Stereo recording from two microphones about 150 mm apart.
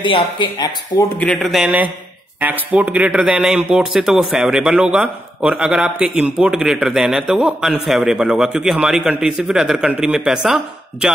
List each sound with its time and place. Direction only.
0.0 s speech: 30° left (ahead or behind)
1.2 s a man's voice: 5° left (ahead or behind)